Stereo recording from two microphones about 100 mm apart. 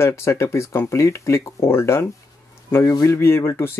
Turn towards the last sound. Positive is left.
turn(degrees=25)  # may be behind; listen again after turning